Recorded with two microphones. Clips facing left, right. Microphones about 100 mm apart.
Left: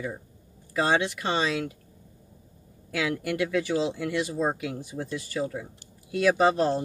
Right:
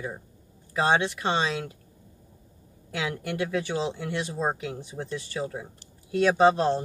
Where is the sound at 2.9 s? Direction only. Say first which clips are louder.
Left 2 dB; 25° right (ahead or behind).